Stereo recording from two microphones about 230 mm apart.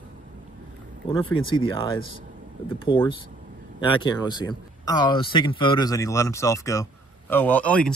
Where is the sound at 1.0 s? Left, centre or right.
Left.